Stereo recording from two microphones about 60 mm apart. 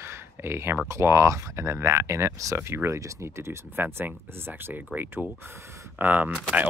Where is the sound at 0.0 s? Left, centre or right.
Right.